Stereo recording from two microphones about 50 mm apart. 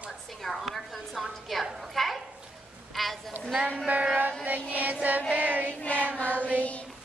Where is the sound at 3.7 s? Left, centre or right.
Right.